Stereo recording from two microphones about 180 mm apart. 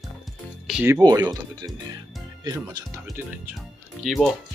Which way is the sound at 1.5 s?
20° right (ahead or behind).